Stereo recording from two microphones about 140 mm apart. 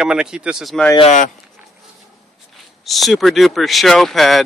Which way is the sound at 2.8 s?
Centre (ahead or behind).